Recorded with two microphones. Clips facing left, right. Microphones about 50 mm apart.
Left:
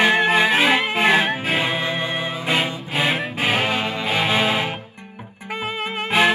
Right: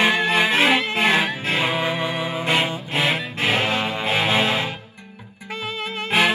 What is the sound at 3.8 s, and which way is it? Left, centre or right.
Music, centre.